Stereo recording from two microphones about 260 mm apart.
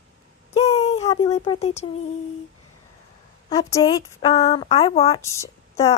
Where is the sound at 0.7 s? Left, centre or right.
Left.